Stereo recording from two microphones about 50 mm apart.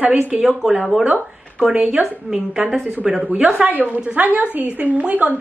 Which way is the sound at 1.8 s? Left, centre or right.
Right.